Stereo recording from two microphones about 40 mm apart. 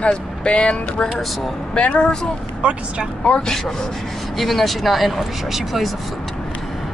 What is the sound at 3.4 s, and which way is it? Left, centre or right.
Speech, centre.